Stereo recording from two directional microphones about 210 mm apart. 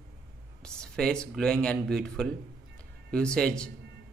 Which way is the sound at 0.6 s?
5° left (ahead or behind).